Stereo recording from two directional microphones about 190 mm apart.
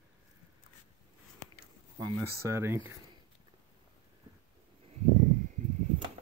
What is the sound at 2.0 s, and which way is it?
Speech, 20° right (ahead or behind).